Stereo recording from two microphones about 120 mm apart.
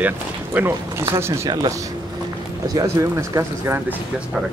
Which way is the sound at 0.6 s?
20° right (ahead or behind).